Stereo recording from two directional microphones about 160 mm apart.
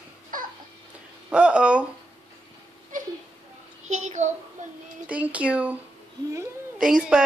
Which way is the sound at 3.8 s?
45° right (ahead or behind).